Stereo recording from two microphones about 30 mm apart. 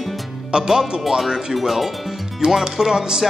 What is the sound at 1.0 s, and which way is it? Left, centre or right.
Music, centre.